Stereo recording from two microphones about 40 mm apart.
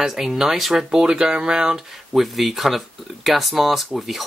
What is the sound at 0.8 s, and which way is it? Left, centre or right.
Speech, centre.